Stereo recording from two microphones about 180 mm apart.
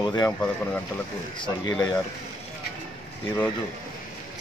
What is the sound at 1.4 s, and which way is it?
Speech, 20° left (ahead or behind).